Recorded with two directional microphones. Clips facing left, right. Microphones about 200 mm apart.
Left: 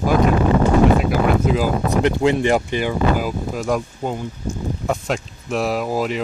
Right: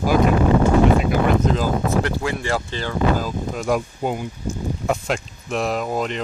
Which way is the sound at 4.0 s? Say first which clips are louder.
Right 1 dB; 15° right (ahead or behind).